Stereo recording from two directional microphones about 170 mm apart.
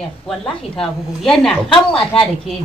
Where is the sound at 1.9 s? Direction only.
30° left (ahead or behind).